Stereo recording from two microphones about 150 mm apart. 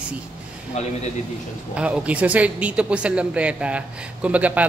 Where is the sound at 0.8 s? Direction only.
45° left (ahead or behind).